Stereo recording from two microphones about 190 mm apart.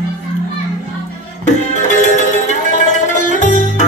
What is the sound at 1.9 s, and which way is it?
Music, 40° left (ahead or behind).